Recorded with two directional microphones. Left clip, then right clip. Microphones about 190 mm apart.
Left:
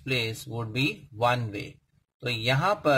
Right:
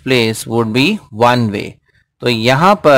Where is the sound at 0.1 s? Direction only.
45° right (ahead or behind).